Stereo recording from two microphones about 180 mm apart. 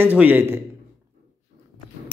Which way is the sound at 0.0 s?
10° right (ahead or behind).